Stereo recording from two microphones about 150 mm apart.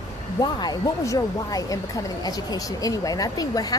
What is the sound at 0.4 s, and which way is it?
Speech, 25° left (ahead or behind).